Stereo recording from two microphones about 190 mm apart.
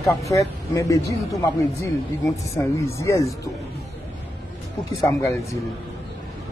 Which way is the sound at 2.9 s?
15° left (ahead or behind).